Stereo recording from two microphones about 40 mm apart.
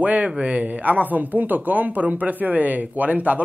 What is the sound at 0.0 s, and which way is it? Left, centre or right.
Speech, right.